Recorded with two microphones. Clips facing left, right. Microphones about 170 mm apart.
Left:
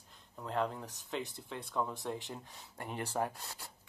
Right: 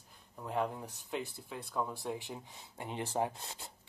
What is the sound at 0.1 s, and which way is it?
Speech, 10° right (ahead or behind).